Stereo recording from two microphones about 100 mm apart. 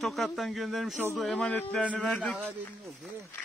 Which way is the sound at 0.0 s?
Centre (ahead or behind).